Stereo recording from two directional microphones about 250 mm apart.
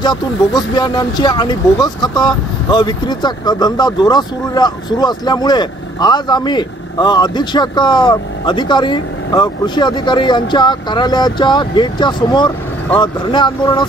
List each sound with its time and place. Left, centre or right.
0.6 s speech: centre